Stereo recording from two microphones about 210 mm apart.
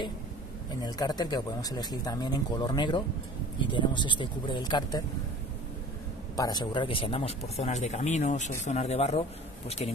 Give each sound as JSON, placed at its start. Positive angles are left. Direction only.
{"t": 0.8, "sound": "speech", "side_deg": 20}
{"t": 6.3, "sound": "speech", "side_deg": 20}